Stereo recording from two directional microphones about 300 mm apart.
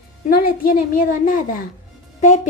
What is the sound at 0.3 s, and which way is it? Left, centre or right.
A woman's voice, left.